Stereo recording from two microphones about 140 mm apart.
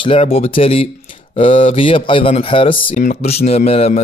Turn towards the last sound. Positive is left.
turn(degrees=50)  # may be behind; listen again after turning